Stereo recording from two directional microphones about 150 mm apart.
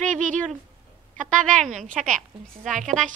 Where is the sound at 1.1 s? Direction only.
5° left (ahead or behind).